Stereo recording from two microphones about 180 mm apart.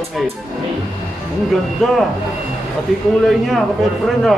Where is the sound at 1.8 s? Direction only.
Centre (ahead or behind).